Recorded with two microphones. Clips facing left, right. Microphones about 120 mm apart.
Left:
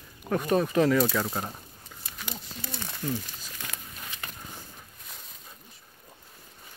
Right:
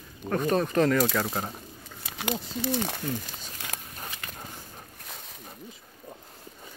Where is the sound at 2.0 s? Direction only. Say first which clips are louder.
Right 10 dB; 90° right.